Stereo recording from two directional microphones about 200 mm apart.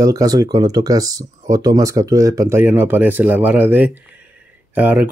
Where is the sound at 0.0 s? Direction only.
20° right (ahead or behind).